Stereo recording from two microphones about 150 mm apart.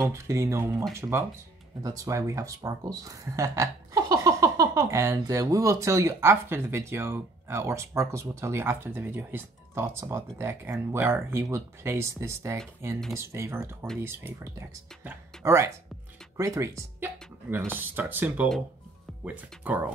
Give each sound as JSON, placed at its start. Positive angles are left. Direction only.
{"t": 0.0, "sound": "speech", "side_deg": -20}